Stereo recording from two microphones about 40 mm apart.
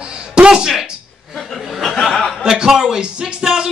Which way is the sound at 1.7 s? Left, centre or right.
Centre.